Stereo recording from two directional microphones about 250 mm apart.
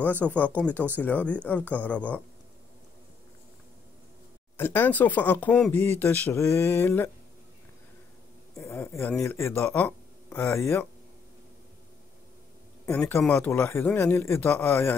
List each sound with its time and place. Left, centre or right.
0.0 s speech: centre
4.6 s speech: centre
8.5 s speech: centre
12.8 s speech: centre